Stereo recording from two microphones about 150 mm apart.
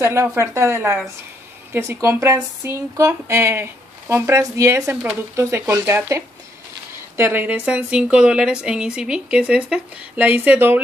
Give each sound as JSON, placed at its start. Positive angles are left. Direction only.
{"t": 0.0, "sound": "a woman's voice", "side_deg": -15}